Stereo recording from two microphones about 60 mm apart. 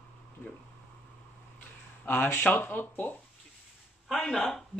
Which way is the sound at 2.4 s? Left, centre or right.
Left.